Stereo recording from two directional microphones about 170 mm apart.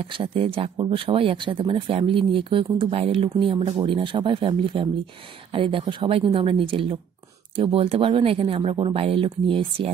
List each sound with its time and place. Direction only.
0.0 s speech: 35° right (ahead or behind)